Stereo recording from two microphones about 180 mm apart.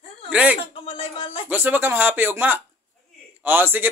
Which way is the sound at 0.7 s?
30° left (ahead or behind).